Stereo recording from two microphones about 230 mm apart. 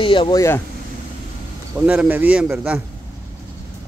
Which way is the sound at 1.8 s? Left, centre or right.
Centre.